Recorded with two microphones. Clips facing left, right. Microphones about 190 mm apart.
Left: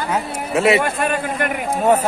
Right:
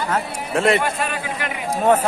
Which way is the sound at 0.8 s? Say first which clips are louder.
Left 4 dB; 50° left (ahead or behind).